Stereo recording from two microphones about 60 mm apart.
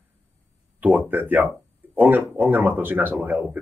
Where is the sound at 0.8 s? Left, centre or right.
Right.